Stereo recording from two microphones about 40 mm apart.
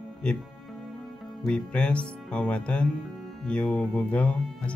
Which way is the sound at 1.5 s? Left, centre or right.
Left.